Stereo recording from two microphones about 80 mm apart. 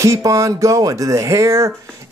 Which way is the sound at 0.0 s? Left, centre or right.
Right.